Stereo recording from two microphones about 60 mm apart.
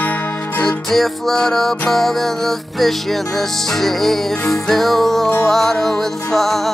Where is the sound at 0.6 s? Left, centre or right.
Centre.